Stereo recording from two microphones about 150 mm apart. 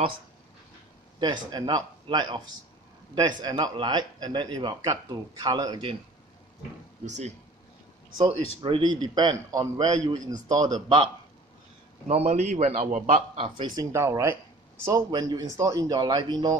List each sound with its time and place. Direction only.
1.2 s a man's voice: 30° right (ahead or behind)
7.1 s a man's voice: 50° right (ahead or behind)
8.2 s a man's voice: 35° right (ahead or behind)
12.1 s a man's voice: 45° right (ahead or behind)
13.4 s speech: 30° right (ahead or behind)
13.9 s a man's voice: 20° right (ahead or behind)